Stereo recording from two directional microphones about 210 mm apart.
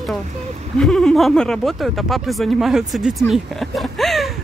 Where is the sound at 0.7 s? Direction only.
Centre (ahead or behind).